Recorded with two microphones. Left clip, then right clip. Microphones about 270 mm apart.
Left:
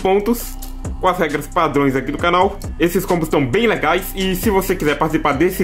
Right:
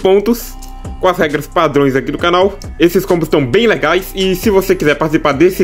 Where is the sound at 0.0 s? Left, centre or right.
Centre.